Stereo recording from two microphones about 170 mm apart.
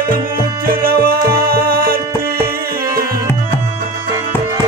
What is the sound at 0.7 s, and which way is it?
Music, 60° right (ahead or behind).